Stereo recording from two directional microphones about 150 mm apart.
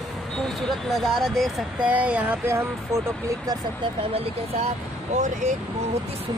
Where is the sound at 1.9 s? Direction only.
10° right (ahead or behind).